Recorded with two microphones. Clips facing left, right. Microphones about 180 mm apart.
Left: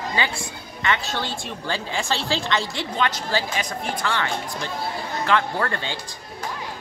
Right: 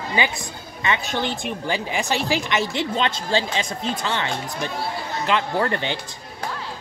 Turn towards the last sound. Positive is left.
turn(degrees=-20)  # may be behind; listen again after turning